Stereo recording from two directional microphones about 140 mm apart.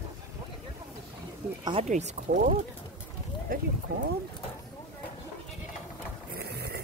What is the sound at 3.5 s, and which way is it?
Speech, 90° right.